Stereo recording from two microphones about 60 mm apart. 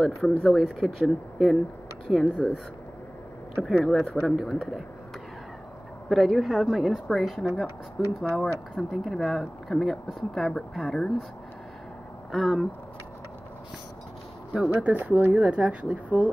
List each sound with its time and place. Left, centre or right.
0.0 s speech: centre
3.6 s speech: centre
6.0 s speech: centre
12.3 s speech: centre
14.8 s speech: right